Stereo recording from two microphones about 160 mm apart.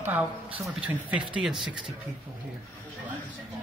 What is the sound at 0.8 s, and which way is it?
Speech, 10° right (ahead or behind).